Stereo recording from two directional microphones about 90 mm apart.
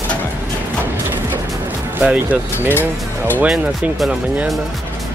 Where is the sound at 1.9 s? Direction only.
20° right (ahead or behind).